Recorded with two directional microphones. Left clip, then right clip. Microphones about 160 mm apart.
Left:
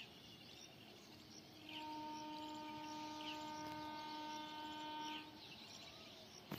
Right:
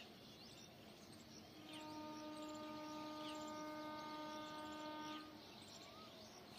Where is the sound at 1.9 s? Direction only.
20° right (ahead or behind).